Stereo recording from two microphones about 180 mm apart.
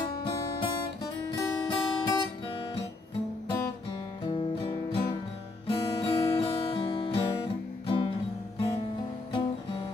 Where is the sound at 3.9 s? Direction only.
25° left (ahead or behind).